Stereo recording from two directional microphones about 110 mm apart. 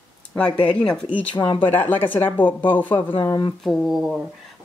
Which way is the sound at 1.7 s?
15° left (ahead or behind).